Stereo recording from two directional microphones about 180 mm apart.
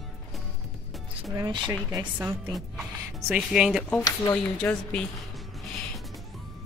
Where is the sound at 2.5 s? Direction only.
Centre (ahead or behind).